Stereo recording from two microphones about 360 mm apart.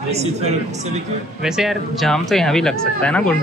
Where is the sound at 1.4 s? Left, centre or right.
Centre.